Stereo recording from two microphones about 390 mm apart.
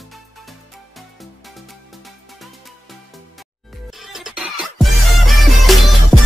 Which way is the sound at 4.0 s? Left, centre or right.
Centre.